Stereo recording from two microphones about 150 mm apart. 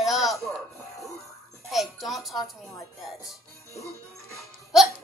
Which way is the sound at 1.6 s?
Centre (ahead or behind).